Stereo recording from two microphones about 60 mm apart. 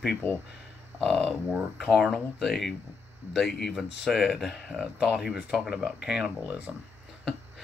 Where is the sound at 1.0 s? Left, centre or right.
Centre.